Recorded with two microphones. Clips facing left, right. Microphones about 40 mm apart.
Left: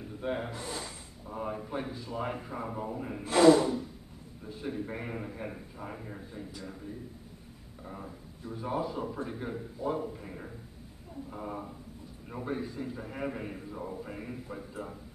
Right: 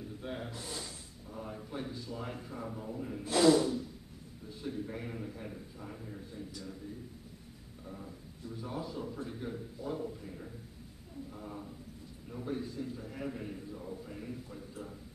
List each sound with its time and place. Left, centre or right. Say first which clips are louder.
0.2 s snort: left 9 dB; left
1.3 s a man's voice: left 7 dB; left
1.7 s speech: left 4 dB; centre
5.1 s a man's voice: left 4 dB; left
6.3 s speech: left 2 dB; left
7.8 s speech: left 4 dB; left
8.5 s speech: left 7 dB; left
10.2 s a man's voice: left 3 dB; left
12.4 s speech: left 2 dB; left
12.9 s a man's voice: left 4 dB; left
13.7 s a man's voice: left 4 dB; left